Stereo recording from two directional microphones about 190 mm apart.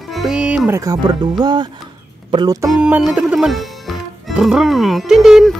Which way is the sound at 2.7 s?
5° right (ahead or behind).